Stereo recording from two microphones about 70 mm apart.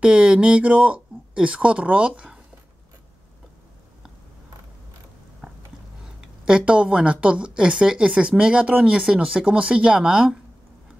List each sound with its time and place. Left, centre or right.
0.0 s speech: centre
5.4 s a sound: centre
6.4 s speech: centre